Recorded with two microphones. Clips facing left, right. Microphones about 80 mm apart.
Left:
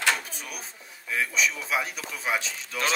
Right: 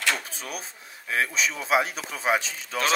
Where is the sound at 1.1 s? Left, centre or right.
Right.